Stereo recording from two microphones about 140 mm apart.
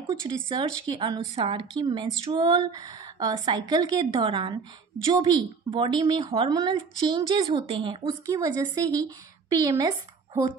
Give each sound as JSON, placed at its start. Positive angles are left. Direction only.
{"t": 0.0, "sound": "speech", "side_deg": -30}